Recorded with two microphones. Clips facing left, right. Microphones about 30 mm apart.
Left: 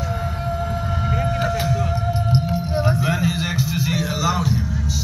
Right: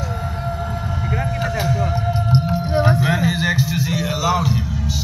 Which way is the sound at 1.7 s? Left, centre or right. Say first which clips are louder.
Right 2 dB; centre.